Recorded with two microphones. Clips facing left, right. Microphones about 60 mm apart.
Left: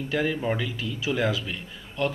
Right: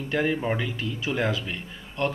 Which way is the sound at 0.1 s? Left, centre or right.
Centre.